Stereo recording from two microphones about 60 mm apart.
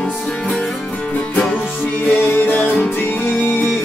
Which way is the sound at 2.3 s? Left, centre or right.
Left.